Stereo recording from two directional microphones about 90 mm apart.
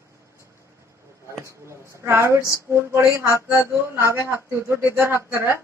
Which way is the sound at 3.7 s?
30° right (ahead or behind).